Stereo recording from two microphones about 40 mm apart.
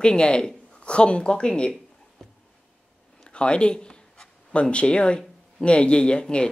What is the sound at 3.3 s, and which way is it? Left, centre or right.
Speech, left.